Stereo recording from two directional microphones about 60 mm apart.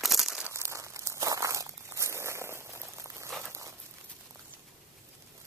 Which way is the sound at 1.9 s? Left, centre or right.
Right.